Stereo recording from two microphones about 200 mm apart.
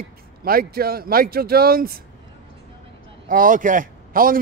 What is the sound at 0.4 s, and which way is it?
A man's voice, 45° right (ahead or behind).